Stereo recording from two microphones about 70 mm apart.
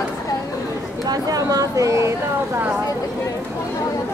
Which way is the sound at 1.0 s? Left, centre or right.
Right.